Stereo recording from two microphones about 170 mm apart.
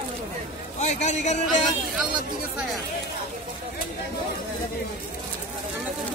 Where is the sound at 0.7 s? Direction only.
40° left (ahead or behind).